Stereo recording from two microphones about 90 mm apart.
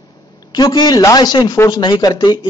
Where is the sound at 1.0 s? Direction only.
45° left (ahead or behind).